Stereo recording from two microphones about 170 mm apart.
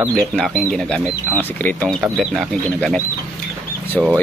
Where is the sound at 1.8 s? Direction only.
Centre (ahead or behind).